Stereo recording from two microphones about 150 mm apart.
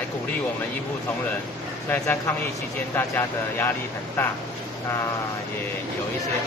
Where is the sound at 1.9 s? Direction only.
15° left (ahead or behind).